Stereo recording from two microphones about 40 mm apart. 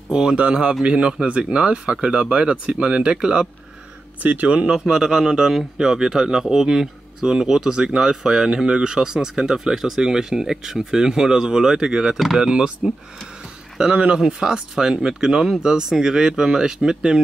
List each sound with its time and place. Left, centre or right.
0.1 s speech: centre
0.4 s speech: right
4.2 s speech: right
4.5 s speech: right
12.2 s speech: centre
12.4 s speech: centre
13.7 s speech: right